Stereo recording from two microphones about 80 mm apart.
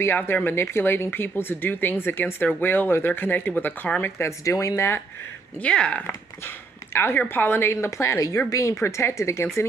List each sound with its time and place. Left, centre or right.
0.0 s speech: left
4.2 s speech: left
5.6 s speech: centre
6.0 s speech: left